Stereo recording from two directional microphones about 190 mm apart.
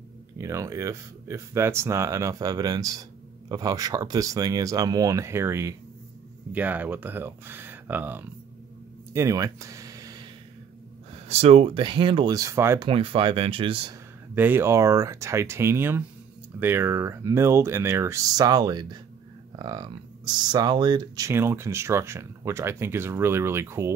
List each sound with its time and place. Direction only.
0.4 s speech: 15° right (ahead or behind)
9.1 s a sound: 15° right (ahead or behind)
11.2 s speech: 35° right (ahead or behind); by 12.8 s 15° right (ahead or behind)
12.8 s speech: 30° right (ahead or behind)
14.3 s speech: 10° right (ahead or behind)